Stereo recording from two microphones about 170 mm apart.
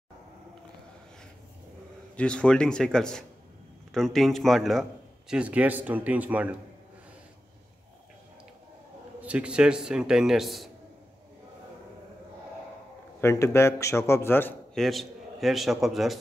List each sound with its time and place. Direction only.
2.1 s a man's voice: 5° left (ahead or behind)
9.2 s a man's voice: 5° right (ahead or behind)
13.2 s a man's voice: 15° left (ahead or behind)
14.8 s a man's voice: centre (ahead or behind)